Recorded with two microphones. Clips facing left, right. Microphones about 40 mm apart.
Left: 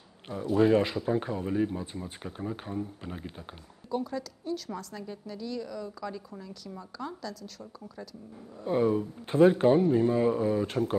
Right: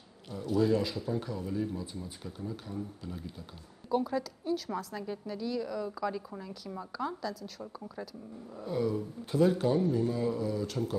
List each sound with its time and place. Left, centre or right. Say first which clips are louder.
0.3 s speech: left 5 dB; left
3.9 s a woman's voice: right 2 dB; centre
8.6 s speech: left 6 dB; left